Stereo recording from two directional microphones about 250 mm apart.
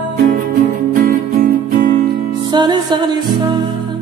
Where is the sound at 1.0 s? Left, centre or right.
Right.